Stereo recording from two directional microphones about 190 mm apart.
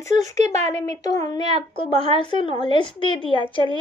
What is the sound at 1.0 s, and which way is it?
A woman's voice, 20° left (ahead or behind).